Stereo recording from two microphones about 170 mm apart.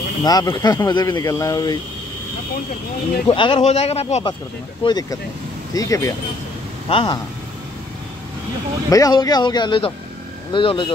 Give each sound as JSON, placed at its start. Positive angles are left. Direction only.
{"t": 0.2, "sound": "speech", "side_deg": 25}
{"t": 3.3, "sound": "speech", "side_deg": 30}
{"t": 6.9, "sound": "speech", "side_deg": 30}
{"t": 8.9, "sound": "speech", "side_deg": 20}